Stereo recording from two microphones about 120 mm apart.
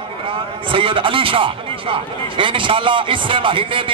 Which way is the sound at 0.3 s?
45° right (ahead or behind).